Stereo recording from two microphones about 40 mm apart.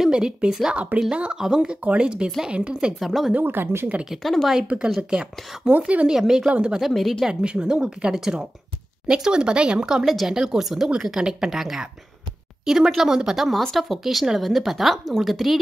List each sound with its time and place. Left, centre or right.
0.1 s speech: right
3.0 s a woman's voice: centre
3.4 s speech: right
4.2 s a woman's voice: centre
4.7 s speech: right
5.7 s speech: right
6.0 s speech: centre
6.4 s speech: right
6.9 s a woman's voice: centre
7.4 s speech: right
10.0 s speech: centre
10.9 s speech: centre
12.6 s speech: centre
13.5 s a woman's voice: centre